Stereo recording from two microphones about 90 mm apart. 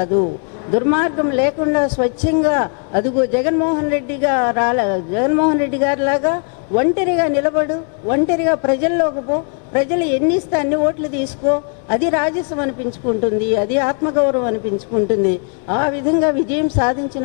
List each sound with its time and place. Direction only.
0.0 s a man's voice: 15° left (ahead or behind)